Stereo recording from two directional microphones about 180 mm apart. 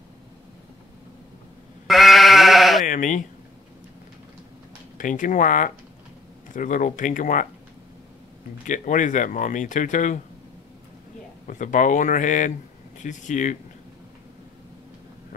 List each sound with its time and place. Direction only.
1.9 s sheep: centre (ahead or behind)
2.9 s speech: 45° left (ahead or behind)
4.9 s speech: 45° left (ahead or behind)
8.6 s speech: 45° left (ahead or behind)
11.4 s speech: 45° left (ahead or behind)